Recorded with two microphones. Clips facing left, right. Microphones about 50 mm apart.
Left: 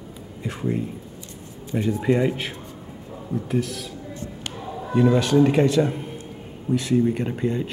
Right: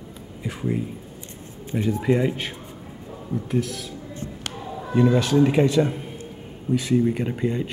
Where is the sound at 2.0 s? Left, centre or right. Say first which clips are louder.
Left 1 dB; centre.